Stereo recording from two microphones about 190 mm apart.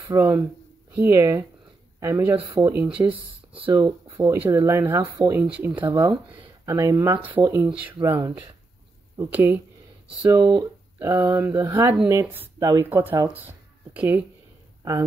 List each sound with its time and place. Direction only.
0.1 s speech: 20° right (ahead or behind)
10.3 s speech: 20° right (ahead or behind)